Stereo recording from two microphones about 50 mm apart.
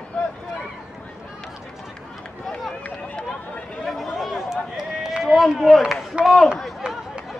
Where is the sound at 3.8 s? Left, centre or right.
Centre.